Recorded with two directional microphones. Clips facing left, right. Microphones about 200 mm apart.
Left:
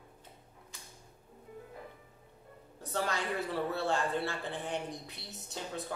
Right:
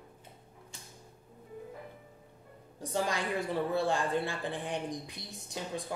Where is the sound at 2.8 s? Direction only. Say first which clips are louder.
Right 2 dB; 15° right (ahead or behind).